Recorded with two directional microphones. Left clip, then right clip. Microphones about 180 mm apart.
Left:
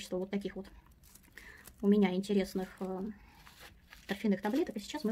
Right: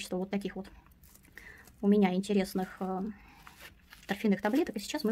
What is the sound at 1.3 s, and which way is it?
Speech, 15° right (ahead or behind).